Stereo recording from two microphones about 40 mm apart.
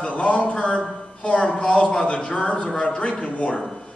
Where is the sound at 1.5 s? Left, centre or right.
Left.